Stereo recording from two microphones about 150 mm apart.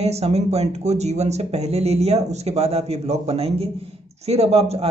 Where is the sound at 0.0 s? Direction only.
45° right (ahead or behind).